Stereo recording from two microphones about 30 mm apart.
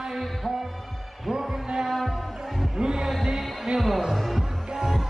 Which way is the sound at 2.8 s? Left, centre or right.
Right.